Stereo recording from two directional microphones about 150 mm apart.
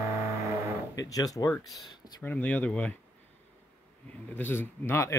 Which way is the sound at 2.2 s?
10° left (ahead or behind).